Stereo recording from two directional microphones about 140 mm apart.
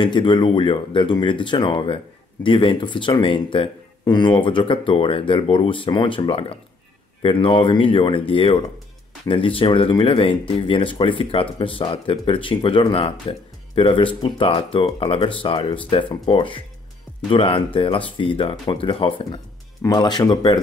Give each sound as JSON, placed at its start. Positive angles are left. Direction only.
{"t": 0.0, "sound": "speech", "side_deg": 35}
{"t": 19.8, "sound": "speech", "side_deg": 30}